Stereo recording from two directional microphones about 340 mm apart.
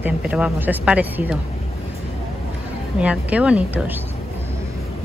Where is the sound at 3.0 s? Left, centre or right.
Centre.